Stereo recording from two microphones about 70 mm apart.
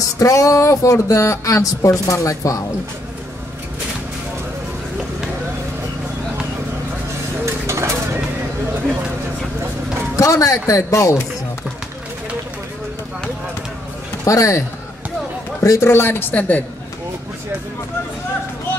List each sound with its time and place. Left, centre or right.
0.2 s speech: left
7.4 s a sound: right
10.1 s speech: left
14.2 s speech: left
15.6 s speech: left
15.9 s a woman's voice: left